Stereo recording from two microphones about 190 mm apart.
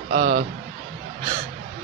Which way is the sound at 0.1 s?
35° right (ahead or behind).